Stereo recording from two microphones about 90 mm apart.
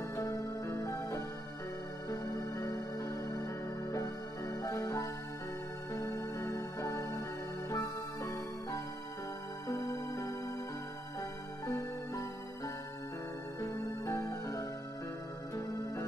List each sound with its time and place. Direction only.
0.1 s music: 35° left (ahead or behind)